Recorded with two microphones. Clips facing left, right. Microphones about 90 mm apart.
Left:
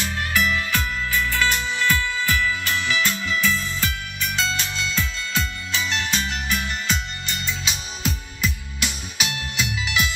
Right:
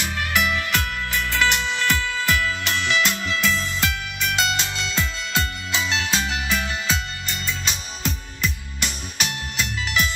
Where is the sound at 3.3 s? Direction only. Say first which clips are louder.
Even; 90° right.